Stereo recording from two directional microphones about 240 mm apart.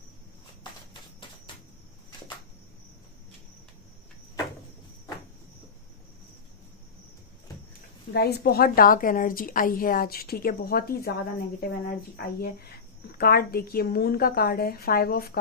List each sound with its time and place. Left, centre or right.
8.1 s a woman's voice: left